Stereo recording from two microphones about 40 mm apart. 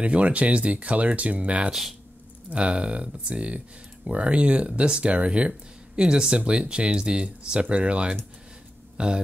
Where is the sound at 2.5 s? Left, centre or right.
Right.